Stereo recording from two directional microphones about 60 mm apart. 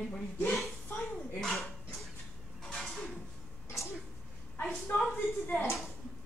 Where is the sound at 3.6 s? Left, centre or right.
Left.